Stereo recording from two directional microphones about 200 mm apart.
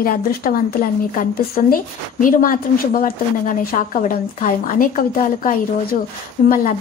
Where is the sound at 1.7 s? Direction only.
40° left (ahead or behind).